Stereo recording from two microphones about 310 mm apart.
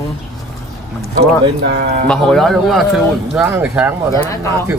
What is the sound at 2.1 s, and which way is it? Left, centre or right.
Speech, centre.